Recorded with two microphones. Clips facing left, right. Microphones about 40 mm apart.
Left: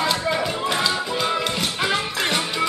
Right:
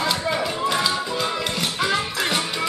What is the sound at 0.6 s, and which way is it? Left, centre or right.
Music, centre.